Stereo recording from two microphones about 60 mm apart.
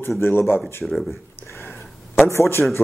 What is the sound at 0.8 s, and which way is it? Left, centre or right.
Speech, centre.